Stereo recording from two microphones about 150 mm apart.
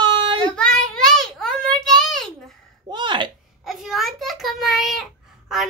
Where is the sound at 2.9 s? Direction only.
30° right (ahead or behind).